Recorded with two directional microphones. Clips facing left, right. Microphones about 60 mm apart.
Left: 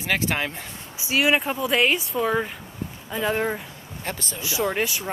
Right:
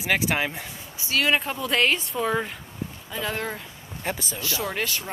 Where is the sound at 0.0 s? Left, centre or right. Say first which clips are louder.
Right 1 dB; centre.